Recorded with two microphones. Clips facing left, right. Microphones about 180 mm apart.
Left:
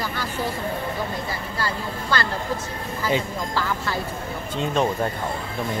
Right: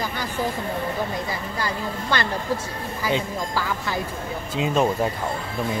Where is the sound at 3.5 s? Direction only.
15° right (ahead or behind).